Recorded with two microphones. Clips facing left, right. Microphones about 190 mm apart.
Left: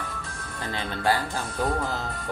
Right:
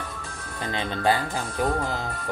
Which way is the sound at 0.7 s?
20° right (ahead or behind).